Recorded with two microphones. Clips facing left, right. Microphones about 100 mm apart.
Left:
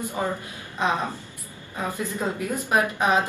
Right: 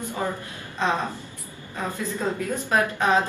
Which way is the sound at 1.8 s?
15° left (ahead or behind).